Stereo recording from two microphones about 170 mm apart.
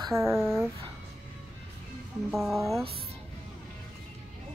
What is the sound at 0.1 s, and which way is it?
Speech, 15° right (ahead or behind).